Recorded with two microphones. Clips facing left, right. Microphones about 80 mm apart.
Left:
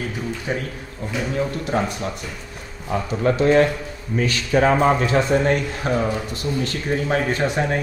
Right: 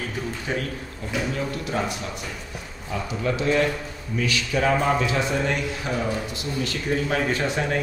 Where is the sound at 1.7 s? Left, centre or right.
Left.